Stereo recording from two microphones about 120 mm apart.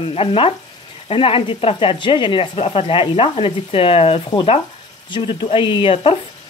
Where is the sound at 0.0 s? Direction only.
50° left (ahead or behind).